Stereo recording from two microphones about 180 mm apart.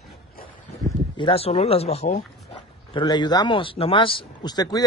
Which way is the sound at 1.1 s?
30° left (ahead or behind).